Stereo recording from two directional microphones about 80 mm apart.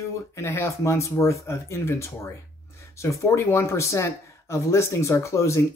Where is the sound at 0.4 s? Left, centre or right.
Left.